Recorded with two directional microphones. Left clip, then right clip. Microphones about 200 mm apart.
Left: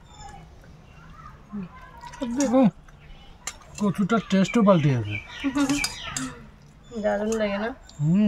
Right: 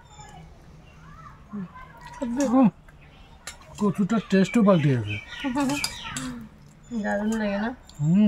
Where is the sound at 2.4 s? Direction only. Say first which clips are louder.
Left 1 dB; 45° left (ahead or behind).